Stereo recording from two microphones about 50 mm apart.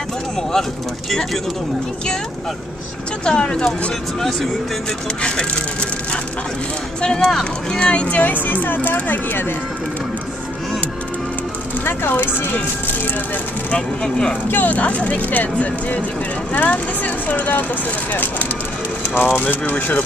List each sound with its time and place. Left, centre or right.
0.4 s speech: centre
3.3 s speech: centre
5.2 s speech: left
7.0 s speech: centre
7.8 s speech: left
8.2 s speech: left
11.8 s speech: left
13.7 s speech: left
14.5 s speech: left